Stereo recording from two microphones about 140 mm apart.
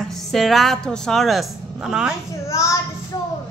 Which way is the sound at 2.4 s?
20° left (ahead or behind).